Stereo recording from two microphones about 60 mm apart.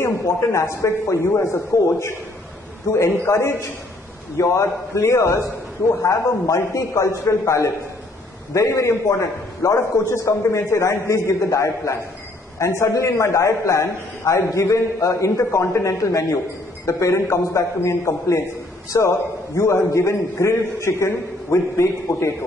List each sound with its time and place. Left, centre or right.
0.0 s a man's voice: left
4.4 s a man's voice: left
9.8 s a man's voice: left